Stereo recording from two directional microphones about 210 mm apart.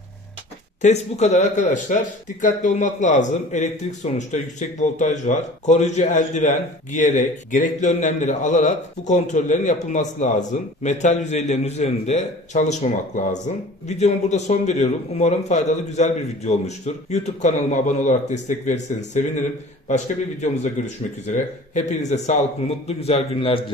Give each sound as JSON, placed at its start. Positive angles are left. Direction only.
{"t": 0.8, "sound": "speech", "side_deg": 30}